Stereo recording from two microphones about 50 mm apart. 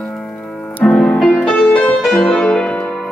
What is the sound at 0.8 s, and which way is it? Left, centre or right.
Music, centre.